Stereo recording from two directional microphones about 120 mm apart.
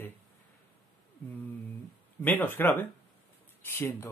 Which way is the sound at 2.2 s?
15° left (ahead or behind).